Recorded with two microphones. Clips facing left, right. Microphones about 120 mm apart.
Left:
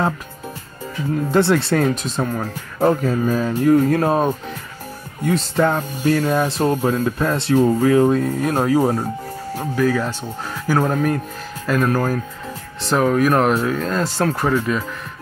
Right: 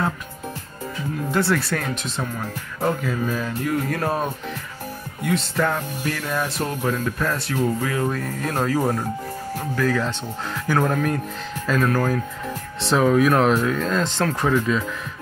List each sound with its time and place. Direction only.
1.3 s speech: 25° left (ahead or behind)
1.9 s speech: 40° left (ahead or behind)
7.1 s speech: 25° left (ahead or behind)
12.8 s speech: centre (ahead or behind)